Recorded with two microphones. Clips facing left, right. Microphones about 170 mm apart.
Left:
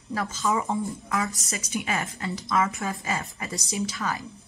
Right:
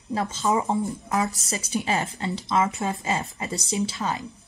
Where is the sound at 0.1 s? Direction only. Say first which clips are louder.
Right 3 dB; 25° right (ahead or behind).